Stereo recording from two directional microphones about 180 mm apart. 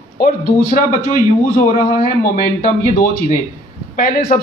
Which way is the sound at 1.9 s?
50° left (ahead or behind).